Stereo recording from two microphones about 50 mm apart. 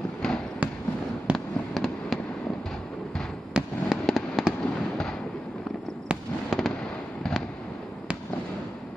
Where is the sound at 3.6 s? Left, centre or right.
Centre.